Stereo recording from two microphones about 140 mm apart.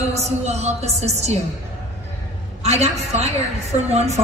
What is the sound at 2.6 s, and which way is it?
A woman's voice, 50° right (ahead or behind).